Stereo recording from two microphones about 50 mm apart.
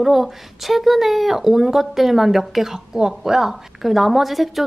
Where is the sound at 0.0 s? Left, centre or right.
Centre.